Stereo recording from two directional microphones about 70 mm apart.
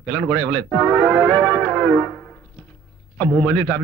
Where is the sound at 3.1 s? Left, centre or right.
Centre.